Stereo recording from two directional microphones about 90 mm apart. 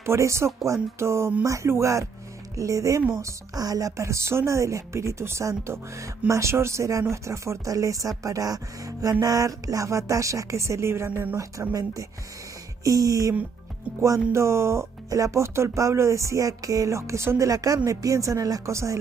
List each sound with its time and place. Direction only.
0.0 s speech: 30° right (ahead or behind)
11.1 s speech: 20° right (ahead or behind)
11.7 s speech: 40° right (ahead or behind)